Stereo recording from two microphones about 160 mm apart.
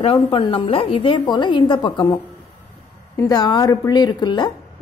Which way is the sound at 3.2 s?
25° left (ahead or behind).